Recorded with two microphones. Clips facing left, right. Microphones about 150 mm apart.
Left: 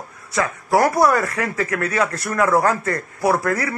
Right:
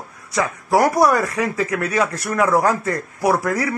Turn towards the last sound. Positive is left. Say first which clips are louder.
# right 1 dB
turn(degrees=-15)  # may be behind; listen again after turning